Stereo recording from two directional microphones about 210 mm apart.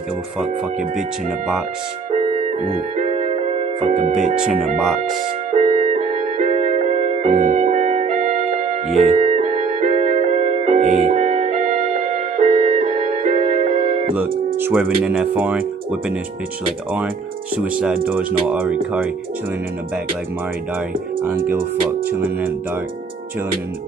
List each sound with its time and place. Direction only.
2.6 s music: 35° right (ahead or behind)
5.6 s music: 35° right (ahead or behind)
14.6 s speech: 5° right (ahead or behind)
17.6 s speech: 5° right (ahead or behind)
22.1 s speech: 10° right (ahead or behind)